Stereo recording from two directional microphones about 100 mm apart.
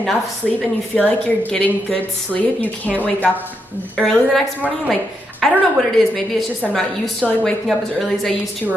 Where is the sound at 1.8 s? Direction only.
15° left (ahead or behind).